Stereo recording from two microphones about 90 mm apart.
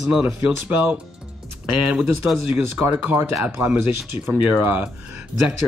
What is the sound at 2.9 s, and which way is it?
Speech, 20° right (ahead or behind).